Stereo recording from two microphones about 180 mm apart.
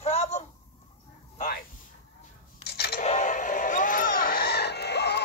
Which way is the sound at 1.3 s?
50° left (ahead or behind).